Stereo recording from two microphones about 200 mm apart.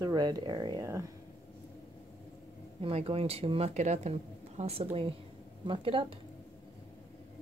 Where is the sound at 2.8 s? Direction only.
30° right (ahead or behind).